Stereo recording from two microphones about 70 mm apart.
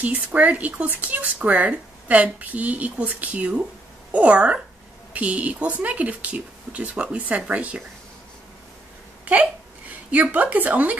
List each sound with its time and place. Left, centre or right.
0.0 s a woman's voice: right
9.2 s speech: centre